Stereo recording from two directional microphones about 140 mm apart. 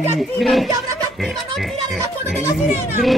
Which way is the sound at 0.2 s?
Centre (ahead or behind).